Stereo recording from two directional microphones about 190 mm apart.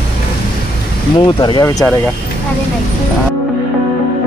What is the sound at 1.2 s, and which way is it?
Speech, 25° left (ahead or behind).